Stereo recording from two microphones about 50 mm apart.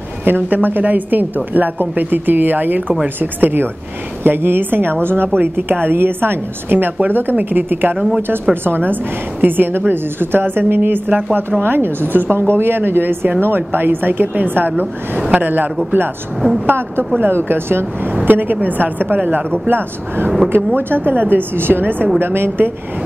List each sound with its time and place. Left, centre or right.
0.2 s a woman's voice: right
11.6 s a woman's voice: right
16.6 s a woman's voice: right
18.2 s a woman's voice: right